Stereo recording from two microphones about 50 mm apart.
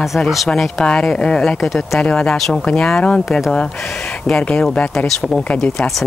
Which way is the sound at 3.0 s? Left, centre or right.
Left.